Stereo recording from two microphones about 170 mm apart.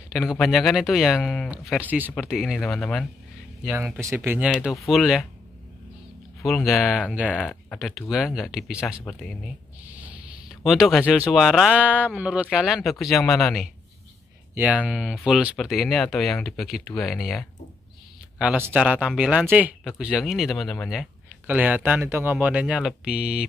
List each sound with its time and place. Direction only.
0.1 s speech: centre (ahead or behind)
4.0 s speech: 15° right (ahead or behind)
4.6 s speech: centre (ahead or behind)
6.4 s speech: centre (ahead or behind)
9.8 s a sound: 10° right (ahead or behind)
11.3 s speech: 5° right (ahead or behind)
14.5 s speech: 10° right (ahead or behind)